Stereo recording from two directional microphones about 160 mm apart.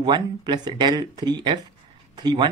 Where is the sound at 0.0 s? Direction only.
30° right (ahead or behind).